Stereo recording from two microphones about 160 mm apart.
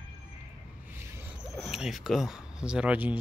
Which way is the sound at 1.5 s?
Centre (ahead or behind).